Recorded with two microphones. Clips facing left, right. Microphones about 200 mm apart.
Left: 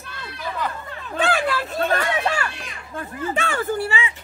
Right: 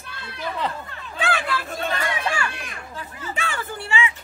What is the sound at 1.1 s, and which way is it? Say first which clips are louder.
Chatter: left 4 dB; 40° left (ahead or behind).